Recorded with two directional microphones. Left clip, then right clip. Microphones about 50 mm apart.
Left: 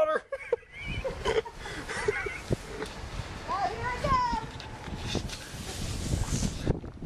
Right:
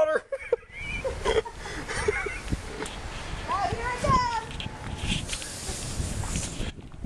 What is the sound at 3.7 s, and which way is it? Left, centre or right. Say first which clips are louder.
Children playing: right 3 dB; right.